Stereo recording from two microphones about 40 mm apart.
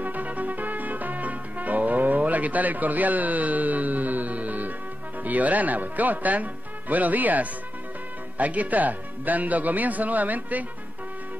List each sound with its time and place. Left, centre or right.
0.0 s music: right
5.2 s speech: right